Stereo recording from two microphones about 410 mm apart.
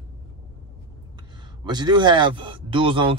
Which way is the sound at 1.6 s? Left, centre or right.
Centre.